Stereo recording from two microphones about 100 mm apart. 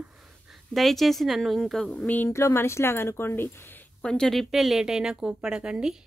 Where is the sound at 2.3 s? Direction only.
25° left (ahead or behind).